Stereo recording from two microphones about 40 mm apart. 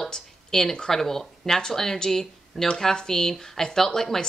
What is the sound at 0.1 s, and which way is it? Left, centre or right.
Speech, centre.